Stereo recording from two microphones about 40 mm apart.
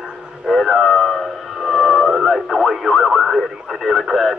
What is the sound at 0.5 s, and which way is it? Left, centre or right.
Radio, centre.